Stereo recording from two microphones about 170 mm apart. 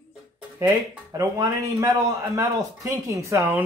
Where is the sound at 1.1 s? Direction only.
15° right (ahead or behind).